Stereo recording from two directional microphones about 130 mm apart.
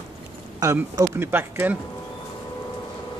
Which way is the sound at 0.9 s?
15° right (ahead or behind).